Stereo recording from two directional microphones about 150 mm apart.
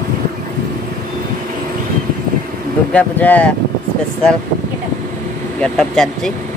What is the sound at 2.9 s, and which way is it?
Speech, 10° left (ahead or behind).